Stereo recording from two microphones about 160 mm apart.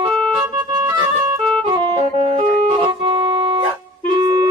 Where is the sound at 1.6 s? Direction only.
30° right (ahead or behind).